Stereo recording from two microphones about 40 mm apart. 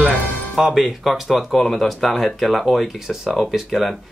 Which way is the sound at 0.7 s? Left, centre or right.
Centre.